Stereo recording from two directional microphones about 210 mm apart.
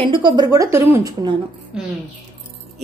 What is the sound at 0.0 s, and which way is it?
A woman's voice, 25° right (ahead or behind).